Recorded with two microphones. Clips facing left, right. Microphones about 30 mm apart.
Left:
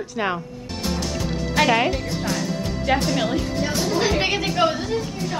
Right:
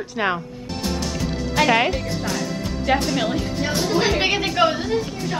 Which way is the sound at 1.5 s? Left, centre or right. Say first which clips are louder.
Right 1 dB; centre.